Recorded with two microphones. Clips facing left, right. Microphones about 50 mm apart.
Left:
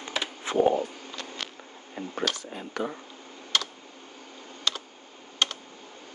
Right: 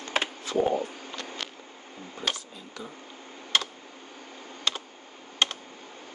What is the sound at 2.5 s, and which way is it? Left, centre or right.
Speech, left.